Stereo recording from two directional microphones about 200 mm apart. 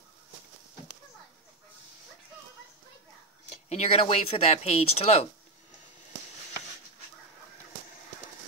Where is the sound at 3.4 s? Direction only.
35° left (ahead or behind).